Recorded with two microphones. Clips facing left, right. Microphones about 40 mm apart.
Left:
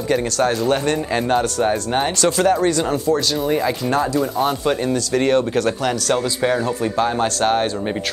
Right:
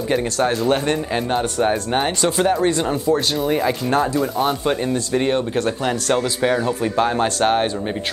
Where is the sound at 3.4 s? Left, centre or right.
Centre.